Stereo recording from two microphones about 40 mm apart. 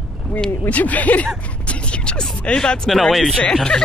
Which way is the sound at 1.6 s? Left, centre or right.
Left.